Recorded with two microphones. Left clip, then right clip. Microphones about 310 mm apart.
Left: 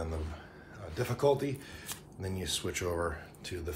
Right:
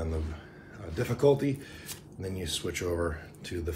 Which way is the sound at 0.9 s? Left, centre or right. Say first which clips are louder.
Right 4 dB; centre.